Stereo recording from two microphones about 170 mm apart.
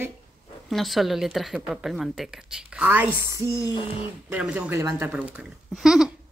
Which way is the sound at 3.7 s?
30° left (ahead or behind).